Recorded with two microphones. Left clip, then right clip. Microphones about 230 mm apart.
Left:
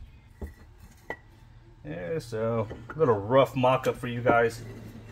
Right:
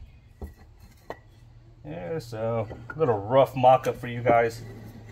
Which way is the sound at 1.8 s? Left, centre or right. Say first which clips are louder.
Even; left.